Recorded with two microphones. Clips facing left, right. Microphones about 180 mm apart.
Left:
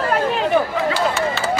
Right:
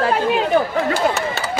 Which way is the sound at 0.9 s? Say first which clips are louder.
Even; 45° right (ahead or behind).